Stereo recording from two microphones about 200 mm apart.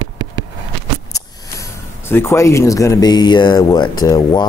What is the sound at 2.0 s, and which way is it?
Speech, 10° left (ahead or behind).